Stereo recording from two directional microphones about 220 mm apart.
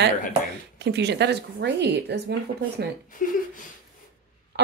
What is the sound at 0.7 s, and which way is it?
Speech, 50° right (ahead or behind).